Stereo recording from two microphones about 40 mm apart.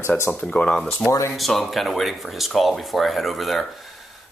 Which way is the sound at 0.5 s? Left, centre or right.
Left.